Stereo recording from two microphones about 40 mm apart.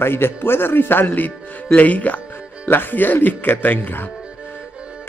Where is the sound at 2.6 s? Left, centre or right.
Left.